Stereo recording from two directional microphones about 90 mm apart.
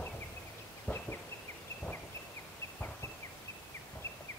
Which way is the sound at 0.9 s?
25° left (ahead or behind).